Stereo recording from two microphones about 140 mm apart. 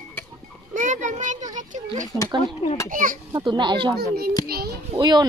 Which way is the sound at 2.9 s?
75° right (ahead or behind).